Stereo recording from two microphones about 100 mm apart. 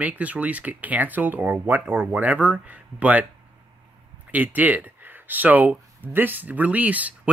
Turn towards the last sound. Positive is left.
turn(degrees=-15)  # may be behind; listen again after turning